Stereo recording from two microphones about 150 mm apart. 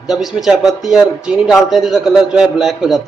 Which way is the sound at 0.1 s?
Centre (ahead or behind).